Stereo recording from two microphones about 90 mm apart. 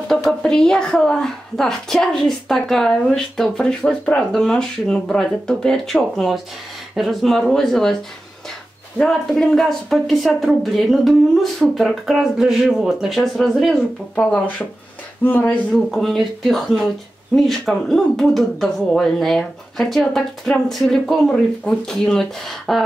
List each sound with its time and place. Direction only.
0.1 s a woman's voice: 5° left (ahead or behind)
14.1 s speech: 15° left (ahead or behind)
15.7 s a woman's voice: 5° left (ahead or behind)